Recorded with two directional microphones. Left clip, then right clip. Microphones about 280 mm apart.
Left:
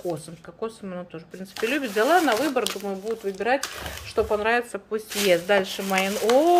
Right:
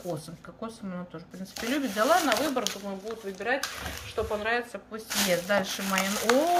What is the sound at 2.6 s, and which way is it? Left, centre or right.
Speech, centre.